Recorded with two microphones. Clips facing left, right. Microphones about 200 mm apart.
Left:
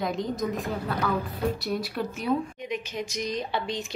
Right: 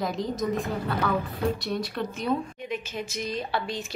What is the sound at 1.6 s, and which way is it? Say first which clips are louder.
Speech: even; 5° left (ahead or behind).